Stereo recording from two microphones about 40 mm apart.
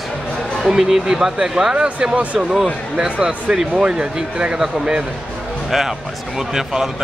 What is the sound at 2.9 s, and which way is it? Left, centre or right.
Speech, right.